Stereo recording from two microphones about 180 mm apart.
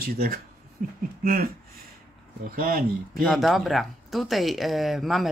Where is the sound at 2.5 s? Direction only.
55° right (ahead or behind).